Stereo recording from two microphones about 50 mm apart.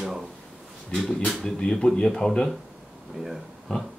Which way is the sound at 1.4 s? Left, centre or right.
Centre.